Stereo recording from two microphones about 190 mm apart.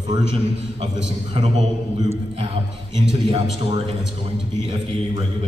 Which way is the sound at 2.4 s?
30° right (ahead or behind).